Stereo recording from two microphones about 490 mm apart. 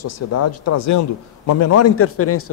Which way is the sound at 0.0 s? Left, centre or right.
Left.